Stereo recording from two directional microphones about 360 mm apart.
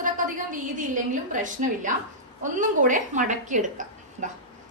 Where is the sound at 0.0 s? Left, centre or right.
Right.